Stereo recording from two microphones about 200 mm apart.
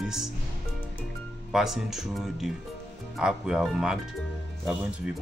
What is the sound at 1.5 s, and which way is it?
Speech, centre (ahead or behind).